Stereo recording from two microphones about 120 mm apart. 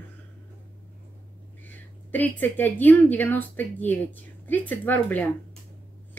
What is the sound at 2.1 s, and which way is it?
A woman's voice, 15° left (ahead or behind).